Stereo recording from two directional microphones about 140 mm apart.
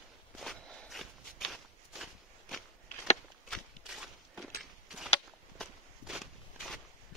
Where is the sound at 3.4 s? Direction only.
Centre (ahead or behind).